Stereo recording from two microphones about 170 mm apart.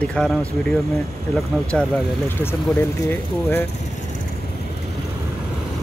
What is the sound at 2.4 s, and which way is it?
Speech, 15° left (ahead or behind).